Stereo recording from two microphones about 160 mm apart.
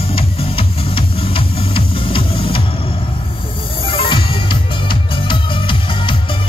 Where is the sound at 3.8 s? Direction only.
35° left (ahead or behind).